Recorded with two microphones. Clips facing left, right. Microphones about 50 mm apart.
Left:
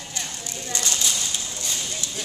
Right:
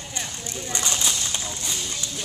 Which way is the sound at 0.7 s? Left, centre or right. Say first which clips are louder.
Even; centre.